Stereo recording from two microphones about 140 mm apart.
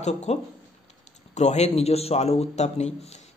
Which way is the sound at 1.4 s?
55° left (ahead or behind).